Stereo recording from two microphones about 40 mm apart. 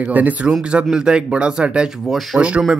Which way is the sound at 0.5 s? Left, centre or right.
Right.